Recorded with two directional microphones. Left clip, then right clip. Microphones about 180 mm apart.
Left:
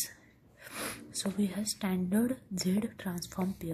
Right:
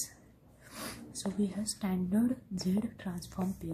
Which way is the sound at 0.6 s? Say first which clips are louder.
Left 4 dB; 30° left (ahead or behind).